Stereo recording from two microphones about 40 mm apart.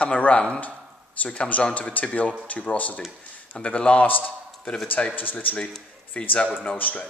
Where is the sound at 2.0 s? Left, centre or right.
Left.